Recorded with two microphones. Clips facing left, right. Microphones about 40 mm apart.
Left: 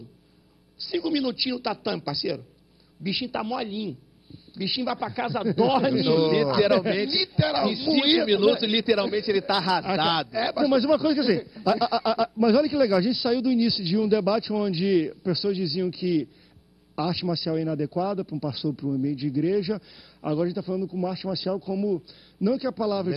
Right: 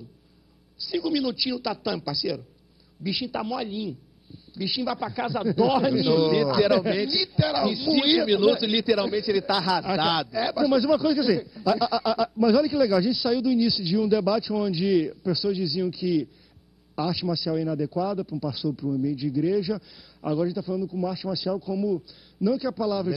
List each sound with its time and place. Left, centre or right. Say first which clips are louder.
0.7 s a man's voice: even; left
18.7 s a man's voice: even; centre
19.0 s a man's voice: even; left